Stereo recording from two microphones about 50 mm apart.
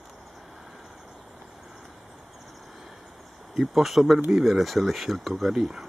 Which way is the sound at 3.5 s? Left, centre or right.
Centre.